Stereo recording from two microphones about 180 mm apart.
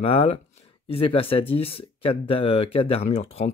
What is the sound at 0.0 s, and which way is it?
Speech, 30° left (ahead or behind).